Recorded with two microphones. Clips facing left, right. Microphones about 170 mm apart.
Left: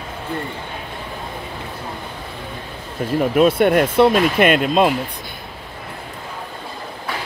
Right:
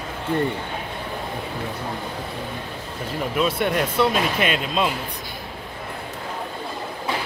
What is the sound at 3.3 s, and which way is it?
Speech, 55° left (ahead or behind).